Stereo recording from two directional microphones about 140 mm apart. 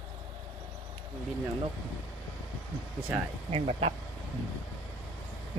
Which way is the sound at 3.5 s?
45° right (ahead or behind).